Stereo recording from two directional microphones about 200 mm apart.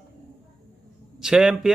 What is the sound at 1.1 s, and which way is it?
Speech, centre (ahead or behind).